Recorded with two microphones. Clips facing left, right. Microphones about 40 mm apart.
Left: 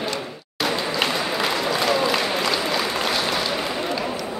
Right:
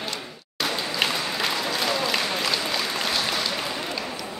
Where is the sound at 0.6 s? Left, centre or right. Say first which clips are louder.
Left 3 dB; centre.